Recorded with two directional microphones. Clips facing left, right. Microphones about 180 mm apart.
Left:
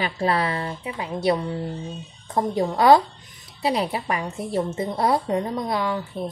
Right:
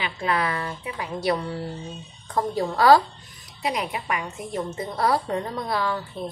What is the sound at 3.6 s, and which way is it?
A woman's voice, 30° left (ahead or behind).